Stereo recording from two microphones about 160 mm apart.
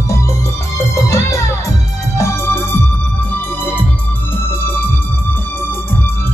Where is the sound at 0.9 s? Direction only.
20° left (ahead or behind).